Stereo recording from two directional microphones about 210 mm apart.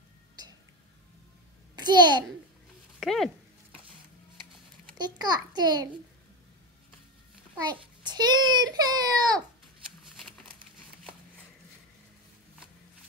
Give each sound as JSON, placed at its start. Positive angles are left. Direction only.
{"t": 1.8, "sound": "a child's voice", "side_deg": -20}
{"t": 3.0, "sound": "speech", "side_deg": 0}
{"t": 4.9, "sound": "a child's voice", "side_deg": -20}
{"t": 7.6, "sound": "a child's voice", "side_deg": -20}